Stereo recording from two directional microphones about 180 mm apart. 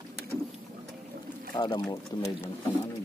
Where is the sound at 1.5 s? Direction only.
25° left (ahead or behind).